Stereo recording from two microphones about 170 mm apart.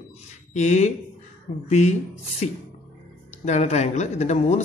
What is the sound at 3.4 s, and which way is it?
A man's voice, 40° left (ahead or behind).